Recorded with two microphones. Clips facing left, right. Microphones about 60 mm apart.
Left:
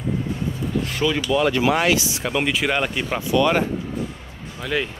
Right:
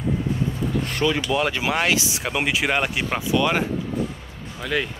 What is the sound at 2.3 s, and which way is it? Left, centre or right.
Speech, centre.